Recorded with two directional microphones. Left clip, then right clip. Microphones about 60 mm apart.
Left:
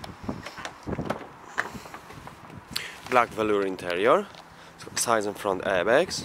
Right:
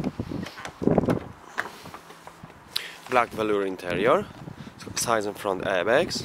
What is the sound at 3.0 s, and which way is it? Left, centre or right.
Speech, centre.